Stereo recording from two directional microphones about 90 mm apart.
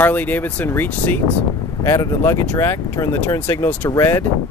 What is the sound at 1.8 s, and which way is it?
Speech, 35° left (ahead or behind).